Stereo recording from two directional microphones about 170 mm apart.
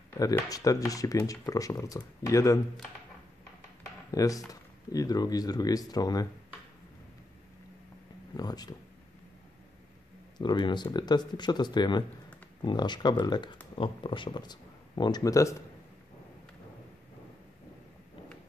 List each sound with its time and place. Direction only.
0.2 s speech: 20° left (ahead or behind)
4.1 s speech: 20° left (ahead or behind)
8.4 s speech: 25° left (ahead or behind)
10.3 s speech: 25° left (ahead or behind)